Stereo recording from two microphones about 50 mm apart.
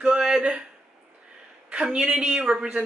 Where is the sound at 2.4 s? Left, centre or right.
Centre.